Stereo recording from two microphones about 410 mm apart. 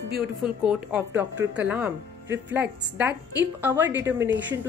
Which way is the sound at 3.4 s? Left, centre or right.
Centre.